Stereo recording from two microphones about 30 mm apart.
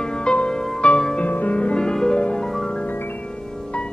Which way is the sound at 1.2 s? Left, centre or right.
Left.